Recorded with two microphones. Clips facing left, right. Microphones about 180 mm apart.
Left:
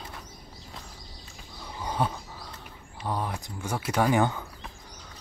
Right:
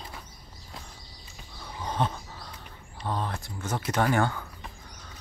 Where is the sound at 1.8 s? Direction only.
10° left (ahead or behind).